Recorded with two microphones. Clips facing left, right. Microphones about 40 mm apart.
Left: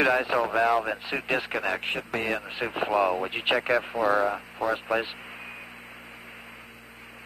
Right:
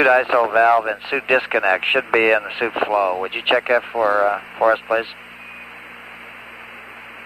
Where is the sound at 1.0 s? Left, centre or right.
Right.